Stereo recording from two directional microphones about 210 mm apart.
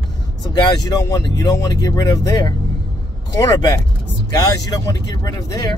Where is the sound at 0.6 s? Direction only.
20° left (ahead or behind).